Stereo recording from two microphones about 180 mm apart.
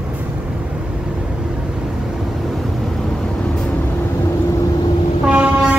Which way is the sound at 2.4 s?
Centre (ahead or behind).